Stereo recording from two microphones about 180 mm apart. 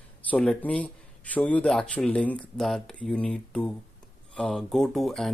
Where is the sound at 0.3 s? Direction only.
5° left (ahead or behind).